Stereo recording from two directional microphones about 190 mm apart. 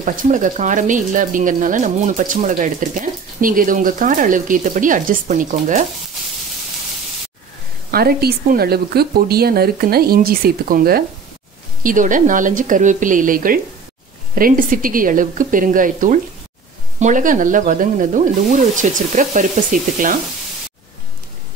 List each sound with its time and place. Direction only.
0.0 s speech: 45° right (ahead or behind)
7.9 s speech: 55° right (ahead or behind)